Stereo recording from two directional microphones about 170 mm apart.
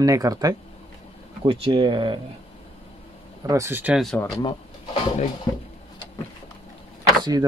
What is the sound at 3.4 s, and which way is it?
Speech, 15° right (ahead or behind).